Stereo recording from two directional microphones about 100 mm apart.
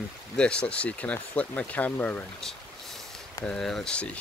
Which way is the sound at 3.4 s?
5° left (ahead or behind).